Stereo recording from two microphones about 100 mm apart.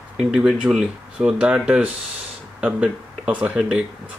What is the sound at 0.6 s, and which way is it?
Speech, 5° right (ahead or behind).